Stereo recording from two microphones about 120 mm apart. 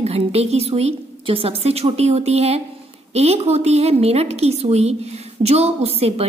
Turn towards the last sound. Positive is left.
turn(degrees=-55)  # may be behind; listen again after turning